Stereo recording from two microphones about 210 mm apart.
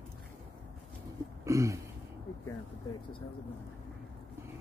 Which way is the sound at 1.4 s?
15° right (ahead or behind).